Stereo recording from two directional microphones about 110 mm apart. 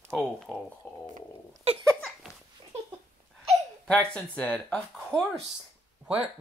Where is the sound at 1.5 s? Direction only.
65° right (ahead or behind).